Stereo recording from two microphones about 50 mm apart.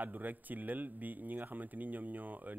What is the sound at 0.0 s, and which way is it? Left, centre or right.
Speech, right.